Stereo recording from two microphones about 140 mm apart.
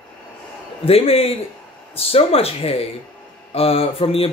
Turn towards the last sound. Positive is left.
turn(degrees=45)  # may be behind; listen again after turning